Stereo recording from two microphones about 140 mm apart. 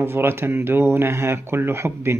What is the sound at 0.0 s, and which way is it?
Speech, 15° right (ahead or behind).